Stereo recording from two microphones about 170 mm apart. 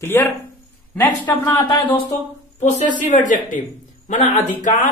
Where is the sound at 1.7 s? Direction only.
30° left (ahead or behind).